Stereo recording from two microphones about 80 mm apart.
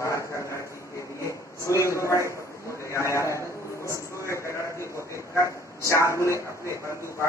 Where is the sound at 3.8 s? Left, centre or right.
Left.